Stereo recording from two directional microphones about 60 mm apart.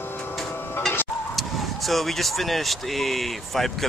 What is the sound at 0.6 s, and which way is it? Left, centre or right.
Tick-tock, left.